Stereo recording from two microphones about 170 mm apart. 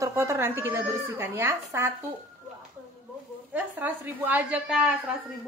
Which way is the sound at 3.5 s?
10° right (ahead or behind).